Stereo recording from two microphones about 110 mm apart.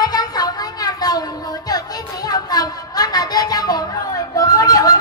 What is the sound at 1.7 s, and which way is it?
Music, 35° left (ahead or behind).